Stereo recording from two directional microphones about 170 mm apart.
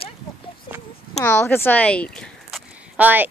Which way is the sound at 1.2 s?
10° left (ahead or behind).